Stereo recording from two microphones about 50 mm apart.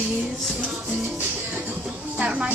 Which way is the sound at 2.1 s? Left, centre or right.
Right.